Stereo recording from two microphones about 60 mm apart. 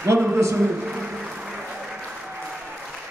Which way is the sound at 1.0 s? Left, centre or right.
Centre.